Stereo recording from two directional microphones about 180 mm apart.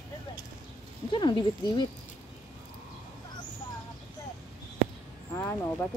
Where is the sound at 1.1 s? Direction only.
25° left (ahead or behind).